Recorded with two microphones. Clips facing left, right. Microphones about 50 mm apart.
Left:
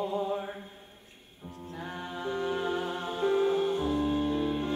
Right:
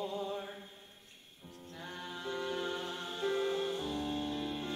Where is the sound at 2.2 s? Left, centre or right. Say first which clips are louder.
Left 6 dB; centre.